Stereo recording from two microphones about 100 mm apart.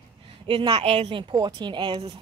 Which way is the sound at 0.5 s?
60° right (ahead or behind).